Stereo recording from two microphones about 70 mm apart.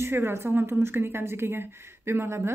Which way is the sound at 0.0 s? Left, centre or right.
Right.